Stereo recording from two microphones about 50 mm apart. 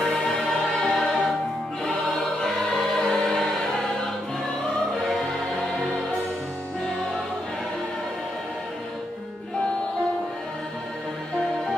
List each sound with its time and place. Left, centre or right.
0.0 s music: centre
1.9 s choir: centre